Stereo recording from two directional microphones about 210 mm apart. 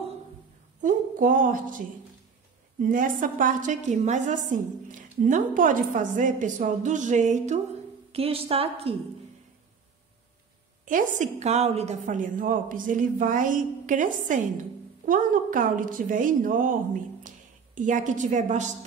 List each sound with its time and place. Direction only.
0.8 s a sound: 40° right (ahead or behind)
2.8 s a woman's voice: 40° right (ahead or behind)
10.9 s a woman's voice: 35° right (ahead or behind)